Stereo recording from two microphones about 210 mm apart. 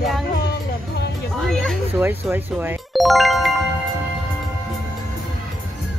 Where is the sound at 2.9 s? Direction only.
Centre (ahead or behind).